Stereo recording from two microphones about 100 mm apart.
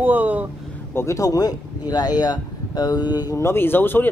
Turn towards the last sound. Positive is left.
turn(degrees=20)  # may be behind; listen again after turning